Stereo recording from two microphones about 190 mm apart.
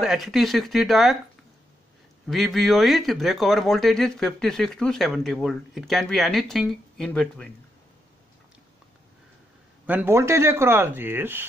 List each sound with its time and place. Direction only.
0.0 s speech: centre (ahead or behind)
2.2 s speech: centre (ahead or behind)
9.8 s speech: 10° right (ahead or behind)